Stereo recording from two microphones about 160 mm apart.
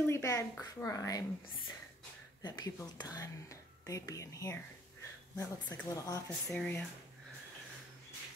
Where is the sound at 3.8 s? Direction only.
20° left (ahead or behind).